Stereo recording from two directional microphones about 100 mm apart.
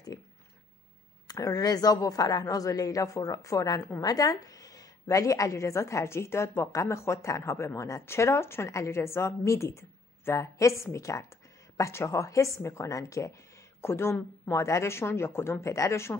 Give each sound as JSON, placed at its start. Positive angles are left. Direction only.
{"t": 1.2, "sound": "a woman's voice", "side_deg": 40}